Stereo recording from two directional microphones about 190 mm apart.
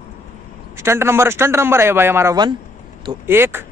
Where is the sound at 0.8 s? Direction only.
15° right (ahead or behind).